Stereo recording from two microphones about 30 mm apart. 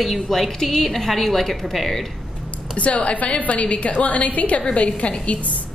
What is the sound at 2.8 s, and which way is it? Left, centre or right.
A woman's voice, left.